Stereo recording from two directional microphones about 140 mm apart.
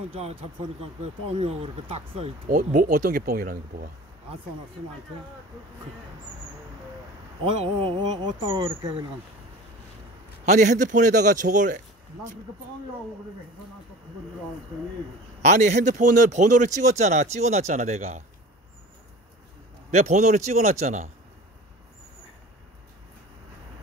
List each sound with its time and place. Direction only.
0.1 s speech: 45° right (ahead or behind)
2.4 s speech: 70° right (ahead or behind); by 3.9 s 90° right
7.5 s speech: 45° right (ahead or behind)
8.0 s speech: 30° right (ahead or behind)
10.4 s speech: 60° right (ahead or behind)
15.4 s speech: 60° right (ahead or behind)
19.9 s speech: 55° right (ahead or behind)